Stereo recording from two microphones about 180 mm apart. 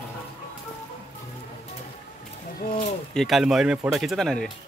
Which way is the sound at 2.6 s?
55° left (ahead or behind).